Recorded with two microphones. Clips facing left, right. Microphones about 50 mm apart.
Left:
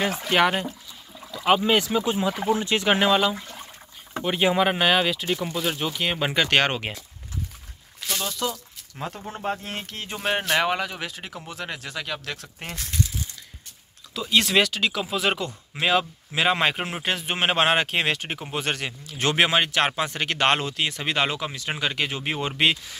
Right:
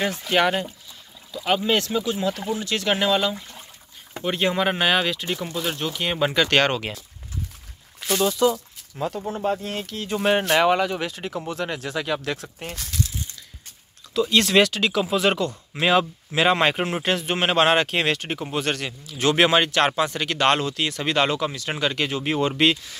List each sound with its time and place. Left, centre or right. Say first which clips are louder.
0.3 s speech: even; centre
8.2 s speech: right 9 dB; centre
8.9 s speech: right 6 dB; left
9.3 s speech: right 2 dB; left
10.2 s speech: right 4 dB; centre
14.3 s speech: right 1 dB; centre
17.3 s speech: right 2 dB; centre
19.0 s speech: right 4 dB; left
19.3 s speech: right 2 dB; centre